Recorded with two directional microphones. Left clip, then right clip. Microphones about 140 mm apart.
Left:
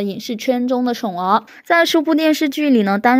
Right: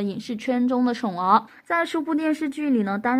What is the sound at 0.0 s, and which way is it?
A woman's voice, 30° left (ahead or behind).